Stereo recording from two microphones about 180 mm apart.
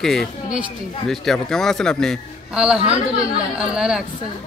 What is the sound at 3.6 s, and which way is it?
Speech, 5° right (ahead or behind).